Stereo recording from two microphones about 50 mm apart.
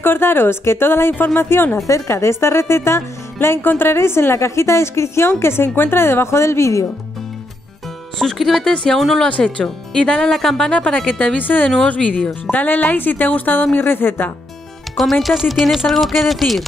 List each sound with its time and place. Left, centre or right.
0.0 s speech: left
1.9 s speech: left
8.2 s speech: centre
9.6 s speech: centre
10.7 s a woman's voice: left
11.3 s a woman's voice: left
13.7 s speech: left
15.0 s speech: centre